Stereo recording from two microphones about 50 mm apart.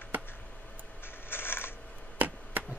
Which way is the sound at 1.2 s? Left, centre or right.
Left.